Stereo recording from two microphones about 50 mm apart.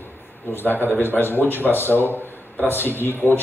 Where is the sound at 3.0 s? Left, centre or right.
Left.